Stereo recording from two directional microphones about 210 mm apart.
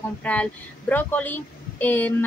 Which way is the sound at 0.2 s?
5° left (ahead or behind).